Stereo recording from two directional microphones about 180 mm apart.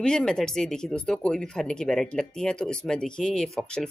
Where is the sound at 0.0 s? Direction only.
5° left (ahead or behind).